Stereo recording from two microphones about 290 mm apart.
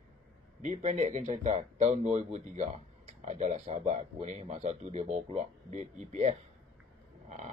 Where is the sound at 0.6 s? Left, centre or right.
Right.